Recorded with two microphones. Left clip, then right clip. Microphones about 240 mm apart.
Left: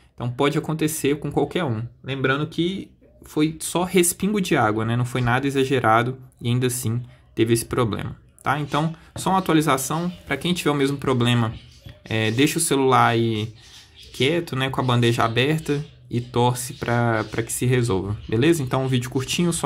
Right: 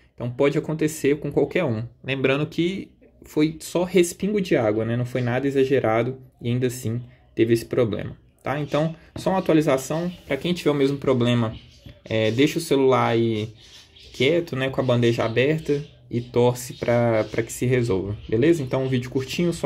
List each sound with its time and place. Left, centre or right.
0.2 s speech: centre